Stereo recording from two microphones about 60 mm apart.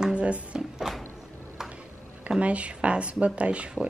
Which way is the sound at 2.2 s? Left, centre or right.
Right.